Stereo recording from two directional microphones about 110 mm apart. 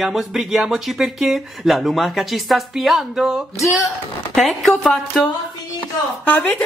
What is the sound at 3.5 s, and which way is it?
Speech, 30° left (ahead or behind).